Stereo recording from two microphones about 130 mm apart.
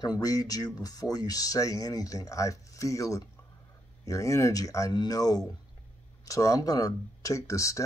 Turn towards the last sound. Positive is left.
turn(degrees=25)  # may be behind; listen again after turning